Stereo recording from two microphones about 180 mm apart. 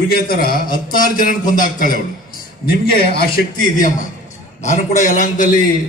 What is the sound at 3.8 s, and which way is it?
A man's voice, 45° left (ahead or behind).